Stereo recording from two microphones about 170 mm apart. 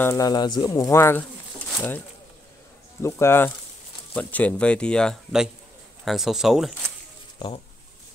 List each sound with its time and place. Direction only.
0.0 s speech: 20° left (ahead or behind); by 6.7 s centre (ahead or behind)
7.3 s speech: 30° left (ahead or behind)